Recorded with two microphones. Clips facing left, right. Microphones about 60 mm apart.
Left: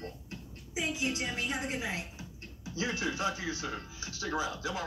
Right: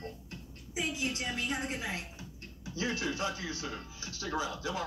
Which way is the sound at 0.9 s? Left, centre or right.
Centre.